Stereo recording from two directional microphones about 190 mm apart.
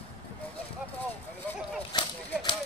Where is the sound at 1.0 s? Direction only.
10° left (ahead or behind).